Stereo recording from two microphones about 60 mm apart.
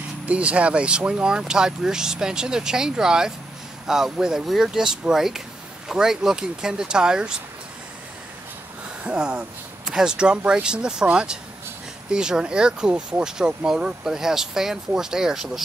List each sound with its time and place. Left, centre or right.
0.3 s speech: right
9.0 s speech: centre